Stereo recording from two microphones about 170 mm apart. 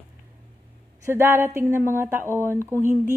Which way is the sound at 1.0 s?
15° right (ahead or behind).